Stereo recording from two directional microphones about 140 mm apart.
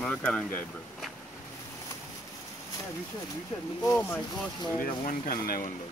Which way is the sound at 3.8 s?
20° left (ahead or behind).